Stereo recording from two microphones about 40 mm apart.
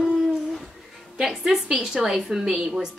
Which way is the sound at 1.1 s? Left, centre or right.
Centre.